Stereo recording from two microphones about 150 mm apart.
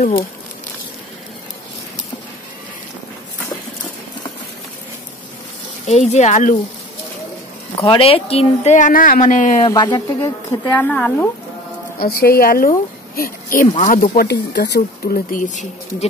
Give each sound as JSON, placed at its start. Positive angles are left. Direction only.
{"t": 5.9, "sound": "speech", "side_deg": 50}
{"t": 7.8, "sound": "a woman's voice", "side_deg": 35}
{"t": 8.7, "sound": "speech", "side_deg": 65}
{"t": 9.7, "sound": "speech", "side_deg": 30}
{"t": 12.0, "sound": "a woman's voice", "side_deg": 85}
{"t": 13.7, "sound": "speech", "side_deg": 55}